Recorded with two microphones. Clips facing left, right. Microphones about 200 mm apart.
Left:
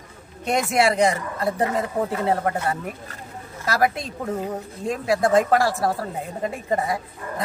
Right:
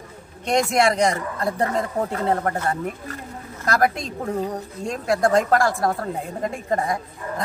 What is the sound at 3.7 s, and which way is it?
Speech, 5° left (ahead or behind).